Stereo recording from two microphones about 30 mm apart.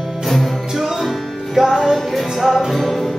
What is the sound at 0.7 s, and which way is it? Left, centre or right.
Music, centre.